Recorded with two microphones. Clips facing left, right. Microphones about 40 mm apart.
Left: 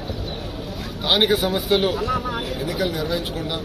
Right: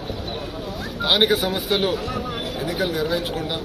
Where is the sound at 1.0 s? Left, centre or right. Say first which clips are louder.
Even; right.